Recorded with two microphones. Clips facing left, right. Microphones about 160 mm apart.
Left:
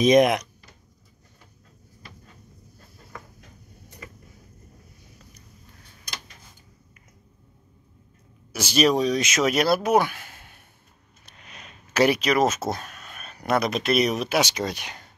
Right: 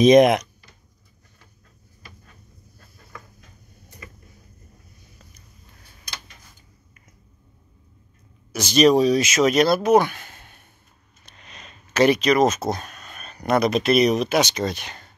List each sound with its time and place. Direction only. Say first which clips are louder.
0.0 s speech: right 4 dB; 25° right (ahead or behind)
8.5 s speech: right 5 dB; 10° left (ahead or behind)
8.9 s speech: right 5 dB; 5° right (ahead or behind); by 15.0 s 10° left (ahead or behind)